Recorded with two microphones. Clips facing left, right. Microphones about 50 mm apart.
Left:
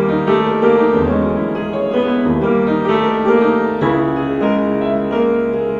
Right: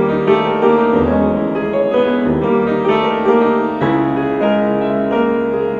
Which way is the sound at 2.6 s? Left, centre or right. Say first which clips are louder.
Right 1 dB; right.